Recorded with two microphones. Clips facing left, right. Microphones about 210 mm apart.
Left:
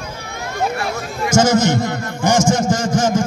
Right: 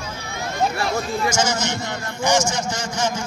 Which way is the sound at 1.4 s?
50° left (ahead or behind).